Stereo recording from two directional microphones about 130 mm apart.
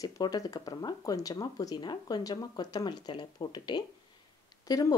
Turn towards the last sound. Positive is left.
turn(degrees=30)  # may be behind; listen again after turning